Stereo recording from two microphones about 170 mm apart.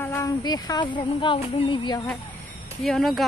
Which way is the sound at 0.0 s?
20° left (ahead or behind).